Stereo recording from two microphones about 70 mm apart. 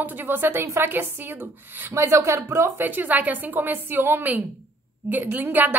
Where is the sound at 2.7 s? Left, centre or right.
Right.